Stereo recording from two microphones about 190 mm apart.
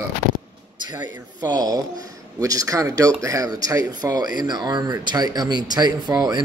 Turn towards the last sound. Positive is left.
turn(degrees=-20)  # may be behind; listen again after turning